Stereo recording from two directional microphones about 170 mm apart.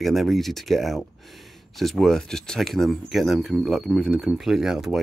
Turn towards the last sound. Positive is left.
turn(degrees=0)  # may be behind; listen again after turning